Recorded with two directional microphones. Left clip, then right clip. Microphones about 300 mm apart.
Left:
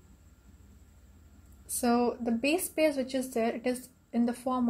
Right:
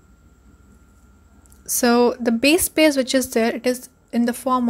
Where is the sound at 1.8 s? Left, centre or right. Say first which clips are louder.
Right 11 dB; right.